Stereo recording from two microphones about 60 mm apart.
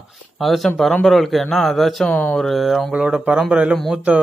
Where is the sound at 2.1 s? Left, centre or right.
Left.